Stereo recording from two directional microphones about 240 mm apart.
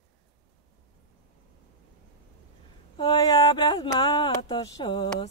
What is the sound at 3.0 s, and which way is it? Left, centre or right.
Speech, centre.